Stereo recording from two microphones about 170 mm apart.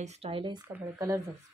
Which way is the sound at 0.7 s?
15° right (ahead or behind).